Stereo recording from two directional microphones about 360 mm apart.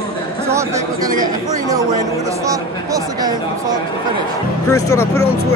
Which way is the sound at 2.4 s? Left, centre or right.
Centre.